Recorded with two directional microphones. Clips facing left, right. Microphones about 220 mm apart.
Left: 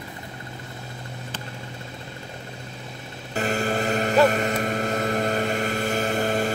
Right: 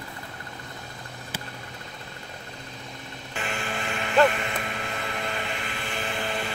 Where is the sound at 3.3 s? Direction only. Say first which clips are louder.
Left 9 dB; 40° left (ahead or behind).